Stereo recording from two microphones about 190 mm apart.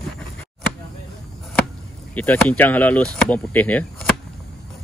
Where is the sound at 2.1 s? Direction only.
10° left (ahead or behind).